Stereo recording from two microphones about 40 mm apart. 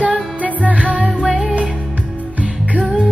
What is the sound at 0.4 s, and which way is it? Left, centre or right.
Music, right.